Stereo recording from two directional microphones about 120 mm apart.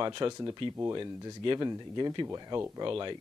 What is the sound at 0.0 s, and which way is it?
Speech, 40° right (ahead or behind).